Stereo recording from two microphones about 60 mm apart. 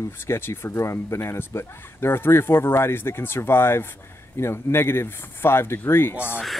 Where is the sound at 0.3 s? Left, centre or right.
Left.